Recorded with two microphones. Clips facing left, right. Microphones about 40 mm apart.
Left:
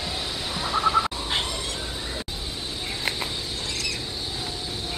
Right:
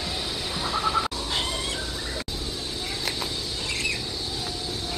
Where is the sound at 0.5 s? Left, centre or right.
Centre.